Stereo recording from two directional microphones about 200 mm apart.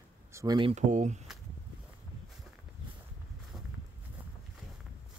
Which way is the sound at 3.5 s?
Centre (ahead or behind).